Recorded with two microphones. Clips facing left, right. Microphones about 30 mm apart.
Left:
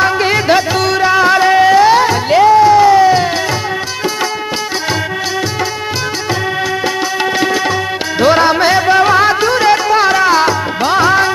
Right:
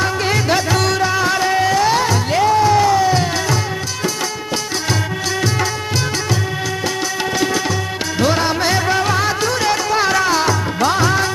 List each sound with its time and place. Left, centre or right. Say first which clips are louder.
0.0 s music: left 6 dB; left
7.3 s music: left 3 dB; left